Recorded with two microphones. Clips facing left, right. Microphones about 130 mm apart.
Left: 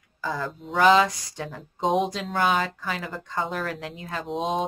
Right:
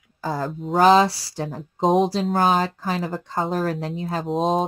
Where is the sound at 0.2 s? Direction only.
40° right (ahead or behind).